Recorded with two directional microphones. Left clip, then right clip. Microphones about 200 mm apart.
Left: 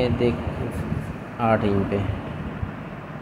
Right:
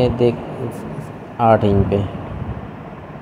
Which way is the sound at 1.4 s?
25° right (ahead or behind).